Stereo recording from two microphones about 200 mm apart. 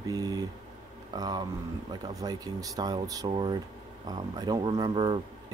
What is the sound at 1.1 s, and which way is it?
Speech, 20° right (ahead or behind).